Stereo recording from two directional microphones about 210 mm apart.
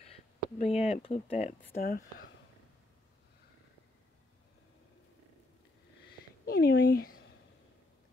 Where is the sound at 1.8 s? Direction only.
45° left (ahead or behind).